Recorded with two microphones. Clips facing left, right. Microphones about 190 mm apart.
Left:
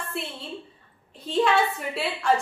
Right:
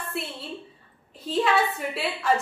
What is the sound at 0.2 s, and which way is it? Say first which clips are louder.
A woman's voice: right 1 dB; centre (ahead or behind).